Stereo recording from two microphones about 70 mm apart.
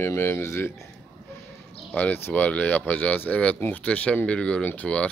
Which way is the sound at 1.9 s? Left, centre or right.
Left.